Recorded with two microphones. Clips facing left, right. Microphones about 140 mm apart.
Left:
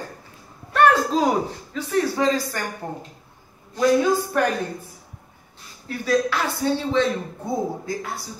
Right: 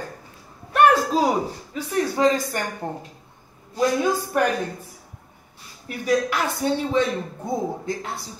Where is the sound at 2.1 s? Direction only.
20° right (ahead or behind).